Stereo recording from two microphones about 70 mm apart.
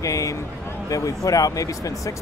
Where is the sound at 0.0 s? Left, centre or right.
Left.